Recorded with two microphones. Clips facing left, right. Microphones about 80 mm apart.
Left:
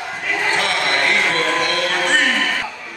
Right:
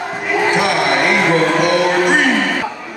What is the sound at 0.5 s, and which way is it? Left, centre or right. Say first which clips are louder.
Music: right 4 dB; centre.